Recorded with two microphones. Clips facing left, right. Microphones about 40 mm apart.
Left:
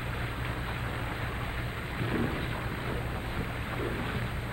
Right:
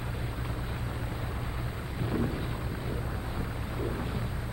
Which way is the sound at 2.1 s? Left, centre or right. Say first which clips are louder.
Even; left.